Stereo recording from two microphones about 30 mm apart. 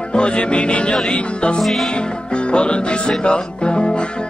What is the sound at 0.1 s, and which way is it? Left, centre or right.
Music, left.